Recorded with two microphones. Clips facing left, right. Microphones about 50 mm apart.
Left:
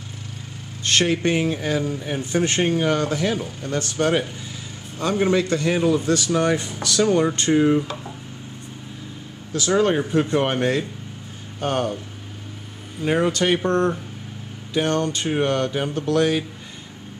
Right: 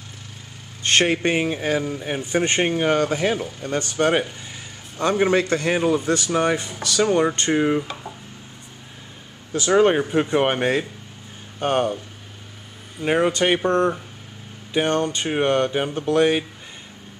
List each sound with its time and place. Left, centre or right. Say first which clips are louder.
0.8 s speech: right 1 dB; right
5.3 s speech: even; right
5.8 s speech: left 1 dB; centre
9.5 s speech: right 2 dB; right
13.0 s speech: right 1 dB; centre